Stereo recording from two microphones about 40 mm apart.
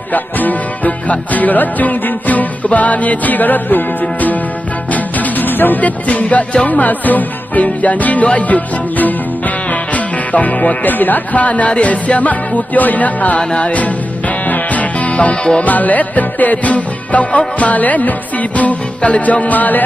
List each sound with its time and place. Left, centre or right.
0.1 s music: left
6.7 s music: left
13.4 s music: left
14.5 s music: left